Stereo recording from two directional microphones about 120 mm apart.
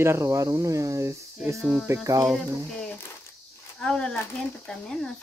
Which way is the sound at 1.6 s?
Centre (ahead or behind).